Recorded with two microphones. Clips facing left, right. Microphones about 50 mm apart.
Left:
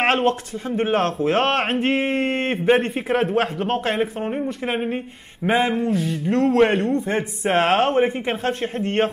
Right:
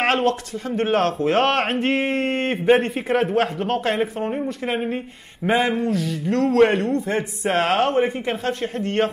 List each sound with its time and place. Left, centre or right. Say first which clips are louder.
0.2 s speech: even; left
0.7 s speech: right 1 dB; centre
7.4 s speech: left 2 dB; centre